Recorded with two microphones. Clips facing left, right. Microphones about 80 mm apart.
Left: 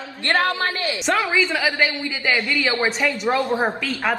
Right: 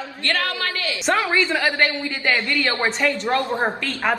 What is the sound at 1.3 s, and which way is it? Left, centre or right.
A woman's voice, centre.